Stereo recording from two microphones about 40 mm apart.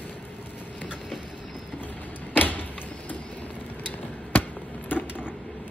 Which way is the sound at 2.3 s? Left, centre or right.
Left.